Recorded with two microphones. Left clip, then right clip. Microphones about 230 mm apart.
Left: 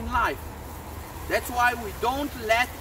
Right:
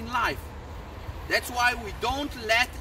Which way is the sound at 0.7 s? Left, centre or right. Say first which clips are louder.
Left 3 dB; left.